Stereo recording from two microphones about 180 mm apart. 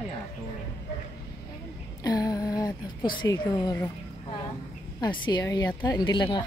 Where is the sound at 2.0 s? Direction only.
20° left (ahead or behind).